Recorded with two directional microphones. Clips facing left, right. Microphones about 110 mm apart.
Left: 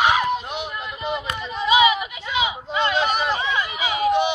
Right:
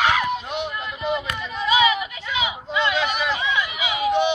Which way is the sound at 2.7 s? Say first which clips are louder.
Left 1 dB; 40° left (ahead or behind).